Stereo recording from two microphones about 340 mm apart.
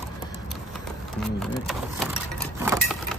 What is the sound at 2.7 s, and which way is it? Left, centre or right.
Keys jangling, centre.